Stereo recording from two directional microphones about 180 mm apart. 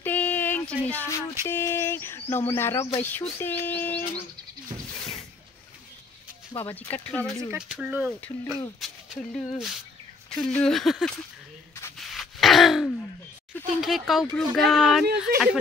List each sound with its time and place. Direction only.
0.0 s a sound: 10° left (ahead or behind)
0.8 s speech: 10° left (ahead or behind)
4.9 s a sound: 5° left (ahead or behind)
6.6 s speech: 10° left (ahead or behind)
7.5 s speech: 5° right (ahead or behind)
12.0 s wail: centre (ahead or behind)
13.8 s speech: centre (ahead or behind)